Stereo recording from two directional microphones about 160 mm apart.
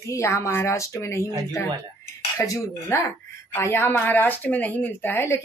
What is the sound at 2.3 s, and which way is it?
A woman's voice, 20° left (ahead or behind).